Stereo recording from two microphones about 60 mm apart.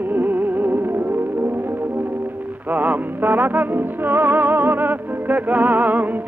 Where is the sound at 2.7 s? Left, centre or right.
Right.